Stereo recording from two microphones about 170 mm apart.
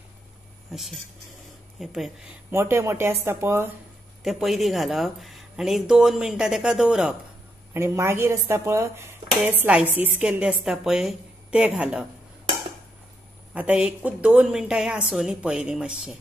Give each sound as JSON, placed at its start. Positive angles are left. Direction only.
{"t": 0.7, "sound": "speech", "side_deg": 0}
{"t": 2.5, "sound": "speech", "side_deg": -15}
{"t": 4.2, "sound": "speech", "side_deg": 0}
{"t": 7.7, "sound": "speech", "side_deg": -15}
{"t": 13.5, "sound": "speech", "side_deg": -10}